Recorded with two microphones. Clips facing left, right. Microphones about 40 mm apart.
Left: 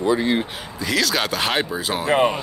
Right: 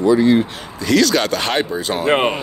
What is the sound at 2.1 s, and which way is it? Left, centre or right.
Speech, right.